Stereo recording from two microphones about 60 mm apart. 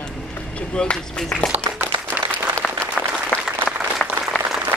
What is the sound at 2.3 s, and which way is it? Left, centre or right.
Applause, left.